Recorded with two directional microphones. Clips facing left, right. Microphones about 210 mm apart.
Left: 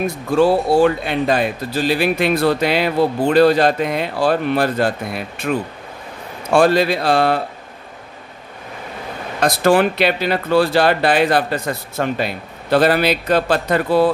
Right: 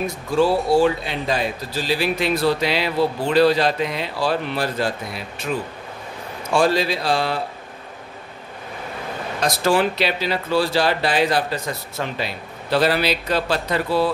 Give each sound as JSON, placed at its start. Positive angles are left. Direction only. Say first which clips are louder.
{"t": 0.7, "sound": "speech", "louder": "left 3 dB", "side_deg": 55}
{"t": 6.5, "sound": "speech", "louder": "left 5 dB", "side_deg": 55}
{"t": 9.4, "sound": "a man's voice", "louder": "left 5 dB", "side_deg": 55}